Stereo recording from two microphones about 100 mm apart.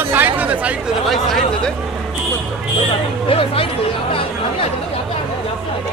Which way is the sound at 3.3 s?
70° left (ahead or behind).